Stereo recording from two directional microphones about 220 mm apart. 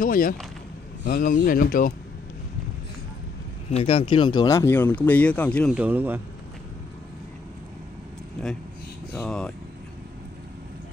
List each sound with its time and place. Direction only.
0.0 s speech: 40° left (ahead or behind)
3.7 s speech: 25° left (ahead or behind); by 5.8 s 5° left (ahead or behind)
5.8 s speech: 10° right (ahead or behind)
9.1 s speech: 5° left (ahead or behind)